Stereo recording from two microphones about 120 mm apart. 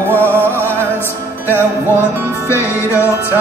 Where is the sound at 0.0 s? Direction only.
20° right (ahead or behind).